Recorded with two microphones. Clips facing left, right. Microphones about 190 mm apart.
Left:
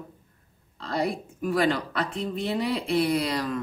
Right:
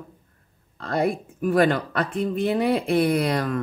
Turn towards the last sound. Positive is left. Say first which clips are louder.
# right 4 dB
turn(degrees=-55)  # may be behind; listen again after turning